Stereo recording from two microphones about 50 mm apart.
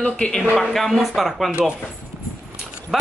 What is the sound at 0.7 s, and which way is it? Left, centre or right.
Speech, centre.